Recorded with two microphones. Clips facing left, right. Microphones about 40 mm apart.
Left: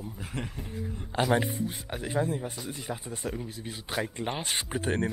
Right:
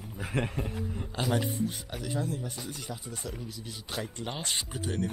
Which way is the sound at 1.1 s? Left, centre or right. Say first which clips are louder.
Left 4 dB; left.